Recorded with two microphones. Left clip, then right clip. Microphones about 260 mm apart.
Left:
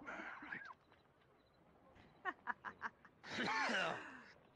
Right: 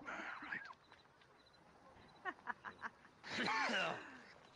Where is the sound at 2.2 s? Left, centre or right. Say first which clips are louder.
Left 1 dB; centre.